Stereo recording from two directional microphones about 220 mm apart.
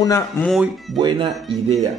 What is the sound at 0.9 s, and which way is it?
Speech, 20° right (ahead or behind).